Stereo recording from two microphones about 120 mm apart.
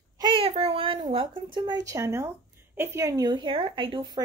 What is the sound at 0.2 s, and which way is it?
Child singing, 50° right (ahead or behind).